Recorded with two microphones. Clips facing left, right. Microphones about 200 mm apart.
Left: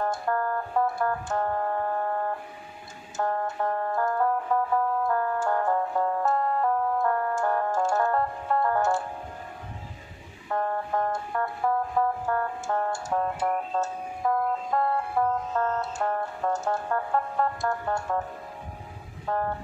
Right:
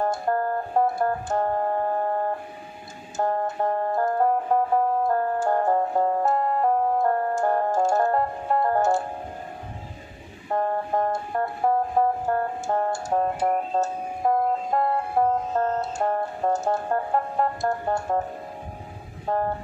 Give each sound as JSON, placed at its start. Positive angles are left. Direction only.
{"t": 0.0, "sound": "music", "side_deg": -35}
{"t": 10.5, "sound": "music", "side_deg": -30}
{"t": 19.2, "sound": "vehicle", "side_deg": -30}